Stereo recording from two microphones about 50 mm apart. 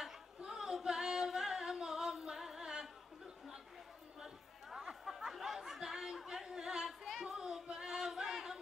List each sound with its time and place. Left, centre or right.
0.5 s singing: centre
4.6 s chatter: centre
7.2 s music: centre
7.7 s a sound: centre